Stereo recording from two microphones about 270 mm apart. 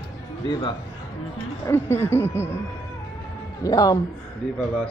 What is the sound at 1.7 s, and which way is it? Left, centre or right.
Speech, centre.